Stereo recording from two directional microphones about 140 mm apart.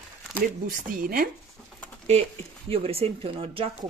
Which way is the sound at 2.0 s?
50° right (ahead or behind).